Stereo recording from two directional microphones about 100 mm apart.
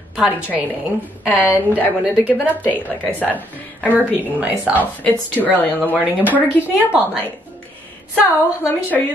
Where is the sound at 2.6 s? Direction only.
20° left (ahead or behind).